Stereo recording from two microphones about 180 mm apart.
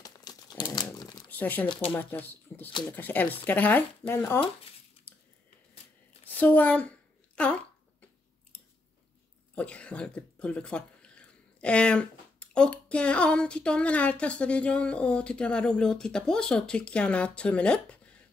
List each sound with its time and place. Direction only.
0.0 s crumpling: 20° left (ahead or behind)
1.3 s speech: 10° left (ahead or behind)
6.2 s a woman's voice: 10° left (ahead or behind)
7.3 s a sound: 5° left (ahead or behind)
9.6 s speech: 5° left (ahead or behind)